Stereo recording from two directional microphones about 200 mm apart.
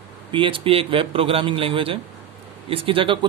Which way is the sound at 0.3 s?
25° right (ahead or behind).